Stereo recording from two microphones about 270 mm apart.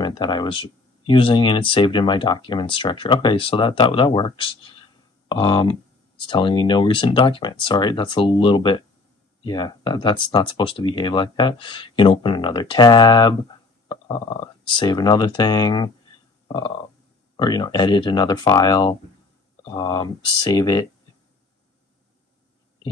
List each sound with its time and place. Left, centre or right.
0.0 s speech: centre
16.4 s a sound: centre
17.4 s speech: centre